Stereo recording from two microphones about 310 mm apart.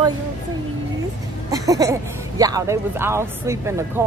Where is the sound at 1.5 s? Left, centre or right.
Centre.